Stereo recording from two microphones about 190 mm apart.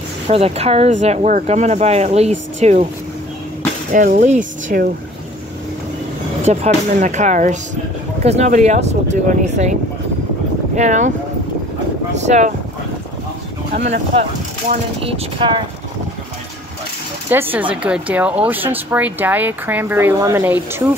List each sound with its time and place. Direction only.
0.3 s speech: 35° right (ahead or behind)
3.9 s speech: 40° right (ahead or behind)
6.4 s speech: 35° right (ahead or behind)
10.8 s speech: 40° right (ahead or behind)
13.7 s speech: 35° right (ahead or behind)
17.3 s speech: 10° right (ahead or behind)